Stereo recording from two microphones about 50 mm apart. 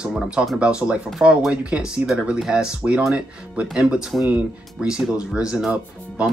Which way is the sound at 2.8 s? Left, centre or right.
Right.